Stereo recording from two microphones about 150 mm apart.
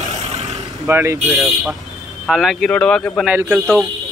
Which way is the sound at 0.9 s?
15° right (ahead or behind).